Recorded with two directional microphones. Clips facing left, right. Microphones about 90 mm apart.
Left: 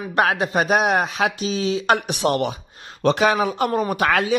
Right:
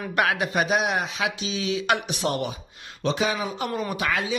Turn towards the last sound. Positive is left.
turn(degrees=55)  # may be behind; listen again after turning